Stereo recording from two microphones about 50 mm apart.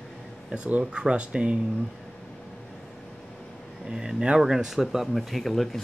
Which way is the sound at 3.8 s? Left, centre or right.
Centre.